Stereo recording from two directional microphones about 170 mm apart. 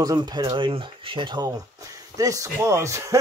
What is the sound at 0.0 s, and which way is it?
Speech, 25° right (ahead or behind).